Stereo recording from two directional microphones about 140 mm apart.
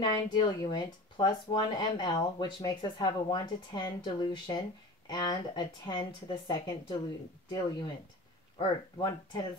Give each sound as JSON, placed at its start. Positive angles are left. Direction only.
{"t": 0.0, "sound": "speech", "side_deg": 30}